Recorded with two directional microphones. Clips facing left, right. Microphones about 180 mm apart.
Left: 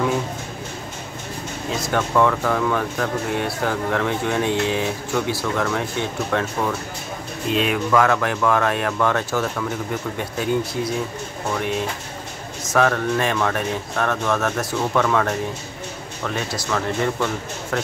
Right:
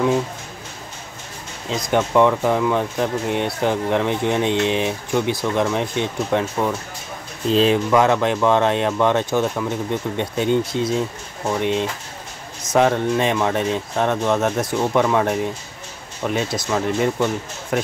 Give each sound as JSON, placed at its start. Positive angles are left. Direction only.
{"t": 1.7, "sound": "speech", "side_deg": -20}
{"t": 7.4, "sound": "speech", "side_deg": -30}
{"t": 12.7, "sound": "speech", "side_deg": -20}